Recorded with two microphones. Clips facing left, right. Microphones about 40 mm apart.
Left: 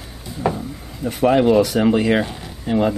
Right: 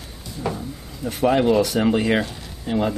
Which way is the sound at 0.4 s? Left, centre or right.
Centre.